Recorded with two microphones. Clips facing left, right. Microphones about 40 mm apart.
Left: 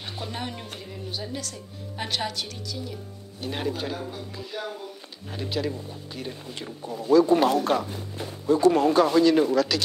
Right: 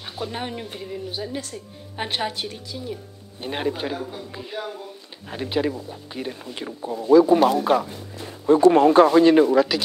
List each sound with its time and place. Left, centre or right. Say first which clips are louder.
0.3 s speech: right 4 dB; centre
1.3 s a woman's voice: right 3 dB; right
4.6 s speech: right 2 dB; centre
5.3 s a woman's voice: right 5 dB; right; by 7.9 s centre
8.5 s a woman's voice: right 5 dB; right